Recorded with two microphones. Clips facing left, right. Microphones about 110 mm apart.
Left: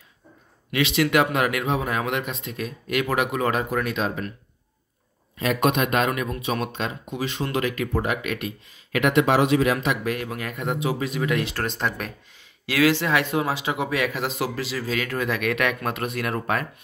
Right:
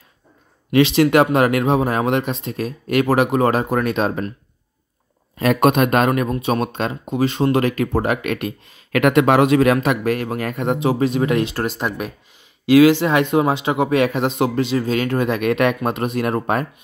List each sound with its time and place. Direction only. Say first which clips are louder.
0.7 s speech: right 8 dB; 35° right (ahead or behind)
5.4 s speech: right 6 dB; 50° right (ahead or behind)
9.8 s speech: right 6 dB; 45° right (ahead or behind)
10.8 s speech: right 9 dB; 35° right (ahead or behind)
12.6 s speech: right 9 dB; 20° right (ahead or behind)